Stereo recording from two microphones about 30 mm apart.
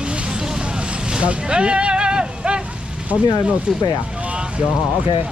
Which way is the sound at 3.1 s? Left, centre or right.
Left.